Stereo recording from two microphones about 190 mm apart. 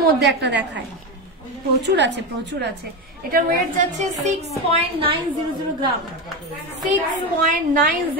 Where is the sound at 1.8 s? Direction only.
65° right (ahead or behind).